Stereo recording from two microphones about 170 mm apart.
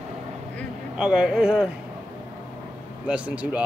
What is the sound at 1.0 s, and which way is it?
Speech, 5° right (ahead or behind).